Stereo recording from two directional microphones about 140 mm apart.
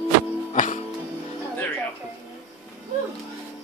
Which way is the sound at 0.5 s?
60° left (ahead or behind).